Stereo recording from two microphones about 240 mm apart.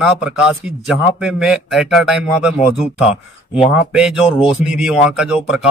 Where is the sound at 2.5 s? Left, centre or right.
Left.